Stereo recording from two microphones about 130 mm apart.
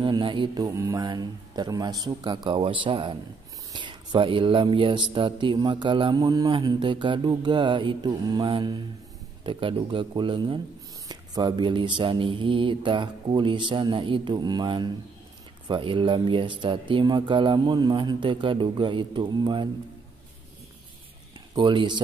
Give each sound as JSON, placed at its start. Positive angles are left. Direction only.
{"t": 0.0, "sound": "speech", "side_deg": -40}
{"t": 0.7, "sound": "speech", "side_deg": -25}
{"t": 21.5, "sound": "speech", "side_deg": -35}